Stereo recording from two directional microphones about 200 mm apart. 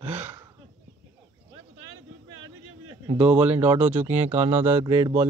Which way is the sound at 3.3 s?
5° right (ahead or behind).